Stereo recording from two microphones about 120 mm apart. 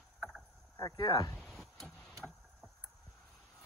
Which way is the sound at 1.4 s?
Centre (ahead or behind).